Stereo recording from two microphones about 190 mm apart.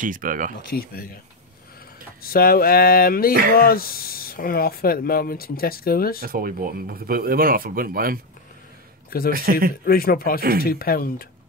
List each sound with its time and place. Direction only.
0.0 s speech: 45° right (ahead or behind)
0.6 s speech: 50° left (ahead or behind)
2.2 s speech: 50° left (ahead or behind)
6.2 s speech: 50° right (ahead or behind)
9.3 s speech: 50° right (ahead or behind)
9.8 s speech: 50° left (ahead or behind)